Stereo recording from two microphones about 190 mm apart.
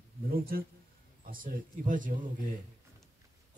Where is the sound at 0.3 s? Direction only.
50° right (ahead or behind).